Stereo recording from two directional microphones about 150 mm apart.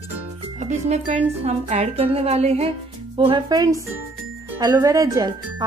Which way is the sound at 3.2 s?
30° right (ahead or behind).